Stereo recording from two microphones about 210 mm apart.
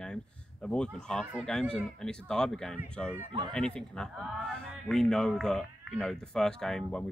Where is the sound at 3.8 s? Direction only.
5° left (ahead or behind).